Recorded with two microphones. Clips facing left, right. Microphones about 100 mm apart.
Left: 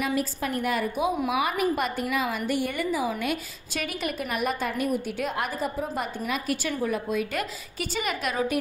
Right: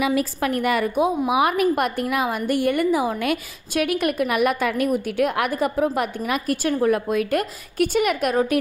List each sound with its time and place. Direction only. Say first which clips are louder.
0.0 s a woman's voice: right 6 dB; 75° right (ahead or behind)
6.4 s a woman's voice: right 11 dB; 50° right (ahead or behind)